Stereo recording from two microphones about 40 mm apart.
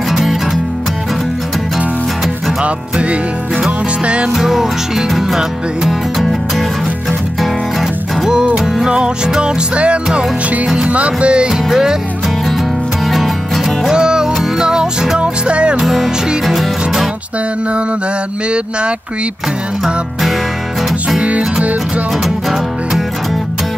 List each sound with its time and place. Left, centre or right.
0.1 s music: centre
2.6 s music: right
4.3 s music: centre
8.8 s music: right
11.5 s music: centre
13.1 s music: centre
13.9 s music: centre
15.8 s music: centre
19.8 s music: centre
21.2 s music: right
22.2 s music: centre